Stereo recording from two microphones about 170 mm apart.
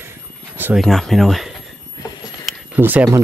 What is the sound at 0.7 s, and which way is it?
Speech, centre (ahead or behind).